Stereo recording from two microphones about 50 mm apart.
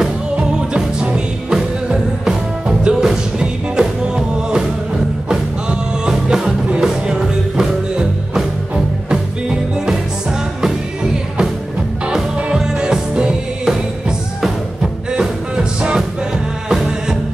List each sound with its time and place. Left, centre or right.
0.4 s music: centre
12.5 s music: centre